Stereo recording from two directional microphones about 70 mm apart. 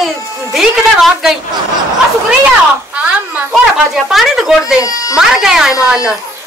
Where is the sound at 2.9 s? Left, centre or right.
Right.